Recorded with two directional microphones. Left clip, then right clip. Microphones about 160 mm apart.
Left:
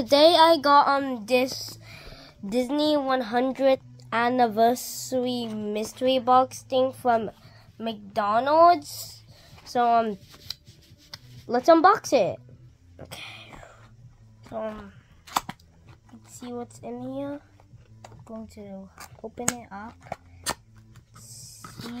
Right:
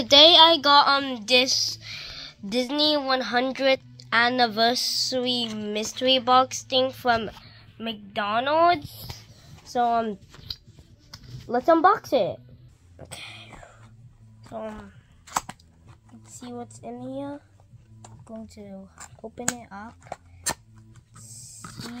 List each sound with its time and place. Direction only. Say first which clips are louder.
0.0 s speech: right 3 dB; 10° left (ahead or behind)
11.4 s speech: left 1 dB; 15° left (ahead or behind)
12.9 s a sound: even; 5° left (ahead or behind)
14.4 s chewing: left 2 dB; 5° left (ahead or behind)
16.1 s speech: left 2 dB; centre (ahead or behind)
18.5 s speech: left 1 dB; 5° right (ahead or behind)
19.9 s dog: left 1 dB; 15° left (ahead or behind)
21.2 s a sound: right 1 dB; 5° left (ahead or behind)